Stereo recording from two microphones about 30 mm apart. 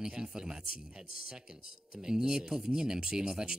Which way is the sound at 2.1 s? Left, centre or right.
Right.